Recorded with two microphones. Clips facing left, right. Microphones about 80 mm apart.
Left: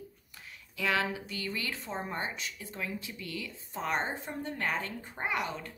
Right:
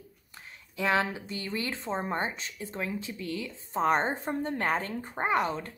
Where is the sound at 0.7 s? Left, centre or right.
Right.